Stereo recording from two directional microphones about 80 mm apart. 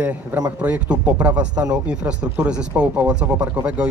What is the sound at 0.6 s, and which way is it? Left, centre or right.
Speech, centre.